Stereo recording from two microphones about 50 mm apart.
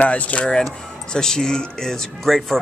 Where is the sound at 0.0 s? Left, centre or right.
Left.